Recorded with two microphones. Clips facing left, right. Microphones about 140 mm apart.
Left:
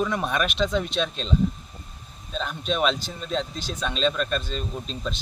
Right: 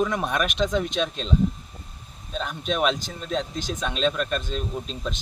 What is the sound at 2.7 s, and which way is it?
Speech, 5° right (ahead or behind).